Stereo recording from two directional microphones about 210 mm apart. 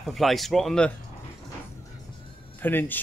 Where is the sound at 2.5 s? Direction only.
10° left (ahead or behind).